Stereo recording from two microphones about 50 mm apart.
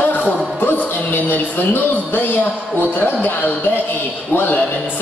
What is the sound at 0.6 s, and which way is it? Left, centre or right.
A man's voice, left.